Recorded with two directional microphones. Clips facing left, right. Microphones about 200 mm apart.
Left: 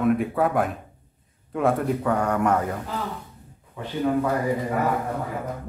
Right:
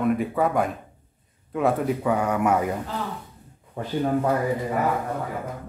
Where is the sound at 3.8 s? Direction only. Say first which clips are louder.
Right 3 dB; 40° right (ahead or behind).